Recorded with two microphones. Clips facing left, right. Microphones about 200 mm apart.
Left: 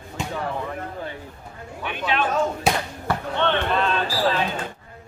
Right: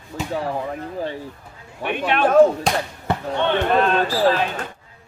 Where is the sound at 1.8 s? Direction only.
55° right (ahead or behind).